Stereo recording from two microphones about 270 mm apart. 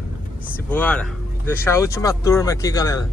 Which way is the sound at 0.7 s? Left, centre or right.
Centre.